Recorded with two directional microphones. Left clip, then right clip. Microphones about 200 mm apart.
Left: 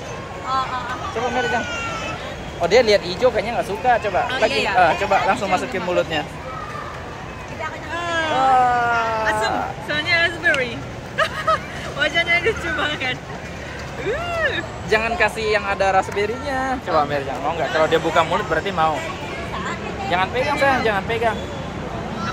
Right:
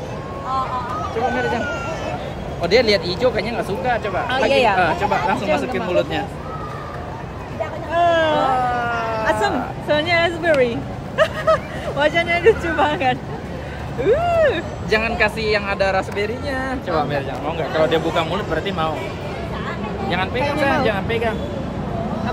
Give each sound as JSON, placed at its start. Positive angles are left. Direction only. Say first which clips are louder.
{"t": 2.6, "sound": "speech", "louder": "left 1 dB", "side_deg": 5}
{"t": 4.3, "sound": "speech", "louder": "right 4 dB", "side_deg": -35}
{"t": 4.7, "sound": "speech", "louder": "left 2 dB", "side_deg": 5}
{"t": 7.9, "sound": "hubbub", "louder": "right 8 dB", "side_deg": -30}
{"t": 8.4, "sound": "a sound", "louder": "left 3 dB", "side_deg": 10}
{"t": 9.8, "sound": "vehicle", "louder": "right 2 dB", "side_deg": -40}
{"t": 14.0, "sound": "speech", "louder": "right 7 dB", "side_deg": -45}
{"t": 14.9, "sound": "speech", "louder": "even", "side_deg": -5}
{"t": 20.1, "sound": "speech", "louder": "left 2 dB", "side_deg": 5}